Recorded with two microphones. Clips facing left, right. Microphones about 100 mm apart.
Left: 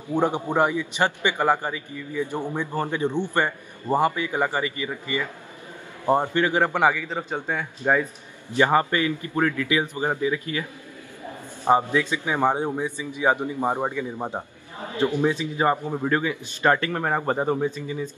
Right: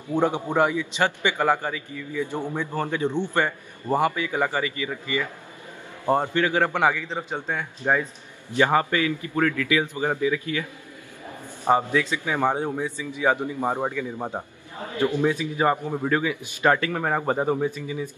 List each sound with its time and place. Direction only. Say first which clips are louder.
0.5 s a man's voice: even; 15° left (ahead or behind)
11.7 s a man's voice: left 1 dB; 15° left (ahead or behind)
15.6 s speech: even; 10° left (ahead or behind); by 18.1 s 10° right (ahead or behind)